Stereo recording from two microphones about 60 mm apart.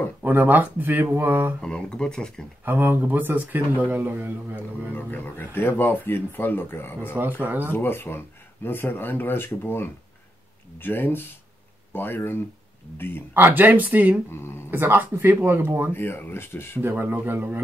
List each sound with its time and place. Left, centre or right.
0.2 s speech: right
1.6 s speech: centre
2.6 s speech: right
4.9 s speech: left
7.2 s speech: right
7.7 s speech: left
13.3 s speech: right
14.3 s speech: left
14.7 s speech: right
15.9 s speech: left
17.0 s speech: right